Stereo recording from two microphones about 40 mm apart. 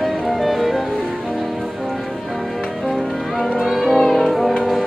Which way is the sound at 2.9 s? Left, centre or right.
Centre.